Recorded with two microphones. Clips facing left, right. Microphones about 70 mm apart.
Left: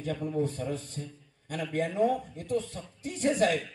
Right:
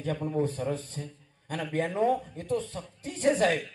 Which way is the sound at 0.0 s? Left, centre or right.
Right.